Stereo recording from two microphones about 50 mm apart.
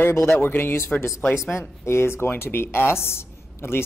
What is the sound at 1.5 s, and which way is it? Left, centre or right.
Speech, left.